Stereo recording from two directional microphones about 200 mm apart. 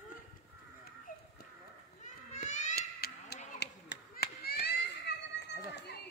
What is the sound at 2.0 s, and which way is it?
Cat, 35° left (ahead or behind).